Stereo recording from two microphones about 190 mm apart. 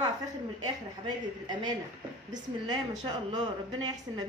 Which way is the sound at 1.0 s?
20° right (ahead or behind).